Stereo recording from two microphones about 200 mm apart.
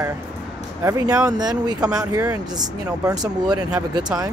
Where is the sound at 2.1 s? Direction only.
15° right (ahead or behind).